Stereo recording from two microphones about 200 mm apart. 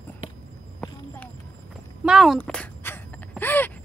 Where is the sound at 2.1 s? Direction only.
Centre (ahead or behind).